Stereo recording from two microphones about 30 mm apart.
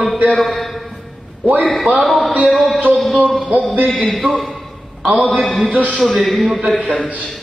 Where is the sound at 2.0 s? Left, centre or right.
Centre.